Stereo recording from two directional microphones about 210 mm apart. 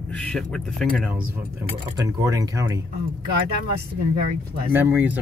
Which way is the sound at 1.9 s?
15° right (ahead or behind).